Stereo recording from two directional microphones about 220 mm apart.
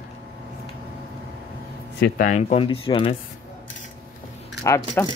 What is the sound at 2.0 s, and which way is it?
Speech, 35° left (ahead or behind).